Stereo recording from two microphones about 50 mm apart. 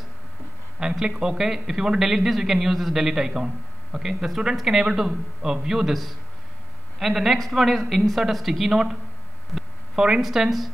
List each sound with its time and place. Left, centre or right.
0.7 s a man's voice: centre
9.6 s hum: centre
10.2 s speech: centre